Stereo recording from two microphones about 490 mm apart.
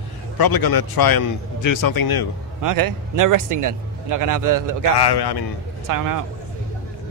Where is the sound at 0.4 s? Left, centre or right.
Left.